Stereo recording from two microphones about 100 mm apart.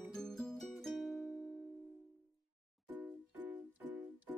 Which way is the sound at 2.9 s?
15° right (ahead or behind).